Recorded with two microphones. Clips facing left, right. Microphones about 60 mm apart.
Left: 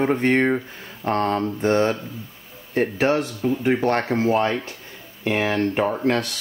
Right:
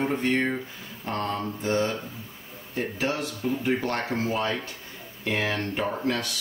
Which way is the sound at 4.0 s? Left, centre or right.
Left.